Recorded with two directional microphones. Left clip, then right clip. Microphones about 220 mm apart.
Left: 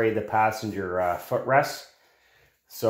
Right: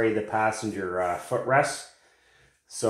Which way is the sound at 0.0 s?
35° left (ahead or behind).